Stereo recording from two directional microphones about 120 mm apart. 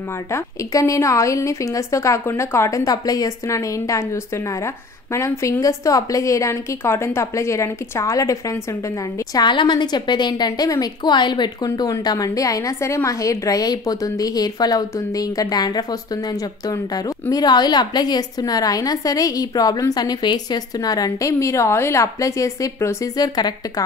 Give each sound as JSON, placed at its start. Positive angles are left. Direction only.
{"t": 0.3, "sound": "a woman's voice", "side_deg": 25}